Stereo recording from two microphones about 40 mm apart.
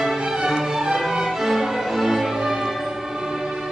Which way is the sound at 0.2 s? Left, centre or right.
Centre.